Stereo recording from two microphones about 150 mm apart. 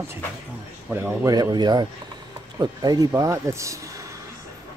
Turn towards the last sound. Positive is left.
turn(degrees=-20)  # may be behind; listen again after turning